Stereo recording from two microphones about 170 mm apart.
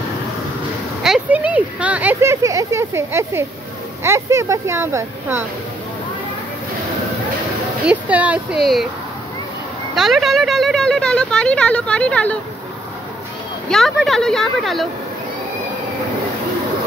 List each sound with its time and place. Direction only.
1.0 s speech: 5° right (ahead or behind)
7.8 s speech: 10° right (ahead or behind)
9.9 s speech: centre (ahead or behind)
13.7 s speech: centre (ahead or behind)